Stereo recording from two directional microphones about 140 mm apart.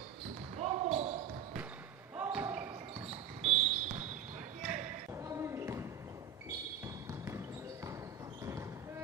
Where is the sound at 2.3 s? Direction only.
10° right (ahead or behind).